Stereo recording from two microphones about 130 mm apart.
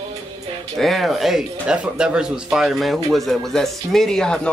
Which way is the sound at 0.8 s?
Centre (ahead or behind).